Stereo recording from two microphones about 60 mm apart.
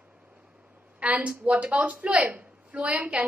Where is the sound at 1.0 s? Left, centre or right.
Right.